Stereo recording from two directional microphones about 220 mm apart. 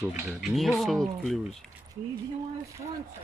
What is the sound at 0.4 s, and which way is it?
Mechanisms, centre (ahead or behind).